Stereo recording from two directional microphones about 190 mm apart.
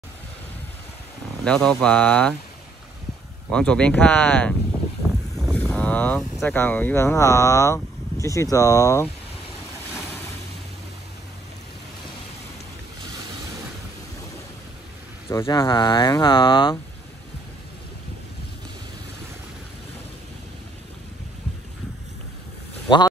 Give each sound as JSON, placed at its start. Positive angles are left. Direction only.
{"t": 1.4, "sound": "speech", "side_deg": 5}
{"t": 3.4, "sound": "speech", "side_deg": 5}
{"t": 15.2, "sound": "speech", "side_deg": 25}